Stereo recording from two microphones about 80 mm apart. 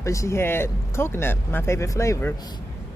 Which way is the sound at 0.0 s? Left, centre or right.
Left.